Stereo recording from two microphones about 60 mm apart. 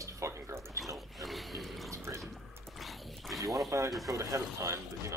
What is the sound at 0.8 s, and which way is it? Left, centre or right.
Speech, centre.